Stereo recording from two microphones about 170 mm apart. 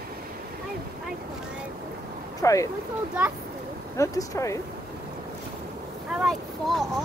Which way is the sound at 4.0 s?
20° left (ahead or behind).